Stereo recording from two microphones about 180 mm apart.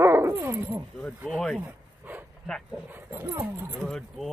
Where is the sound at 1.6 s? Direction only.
10° right (ahead or behind).